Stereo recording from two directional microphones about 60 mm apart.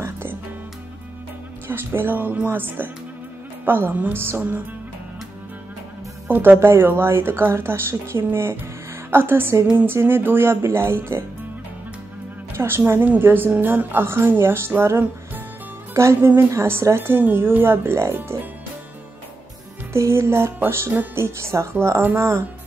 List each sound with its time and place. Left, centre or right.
0.0 s music: right
1.7 s a woman's voice: right
6.2 s a woman's voice: right
12.5 s a woman's voice: right
14.8 s music: right
15.9 s speech: right
16.2 s a woman's voice: right
18.1 s a woman's voice: right
19.9 s speech: right